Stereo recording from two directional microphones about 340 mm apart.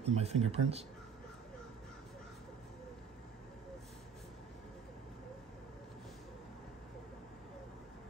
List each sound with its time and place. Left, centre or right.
0.0 s speech: centre